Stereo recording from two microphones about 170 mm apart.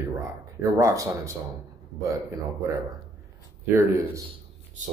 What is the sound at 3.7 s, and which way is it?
Speech, 15° right (ahead or behind).